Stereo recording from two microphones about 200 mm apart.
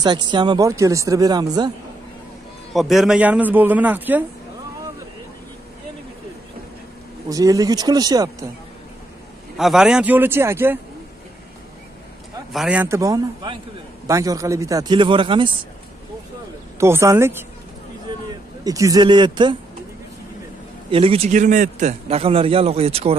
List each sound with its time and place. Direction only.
0.0 s a man's voice: 20° right (ahead or behind)
2.7 s speech: centre (ahead or behind)
7.2 s a man's voice: 20° right (ahead or behind)
9.6 s speech: centre (ahead or behind)
12.5 s a man's voice: 5° right (ahead or behind); by 15.5 s 25° right (ahead or behind)
16.8 s speech: 15° right (ahead or behind)
18.6 s a man's voice: 15° right (ahead or behind)
20.9 s a man's voice: 30° right (ahead or behind)